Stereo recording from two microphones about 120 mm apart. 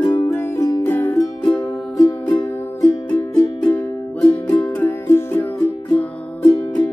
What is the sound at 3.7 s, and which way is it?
Music, 10° left (ahead or behind).